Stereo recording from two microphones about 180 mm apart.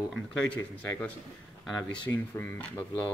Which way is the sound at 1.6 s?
Centre (ahead or behind).